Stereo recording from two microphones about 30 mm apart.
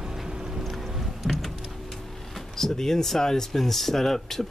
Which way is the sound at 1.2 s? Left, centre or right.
Centre.